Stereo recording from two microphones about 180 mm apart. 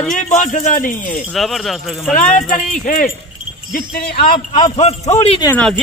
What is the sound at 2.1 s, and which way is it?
A man's voice, 50° left (ahead or behind).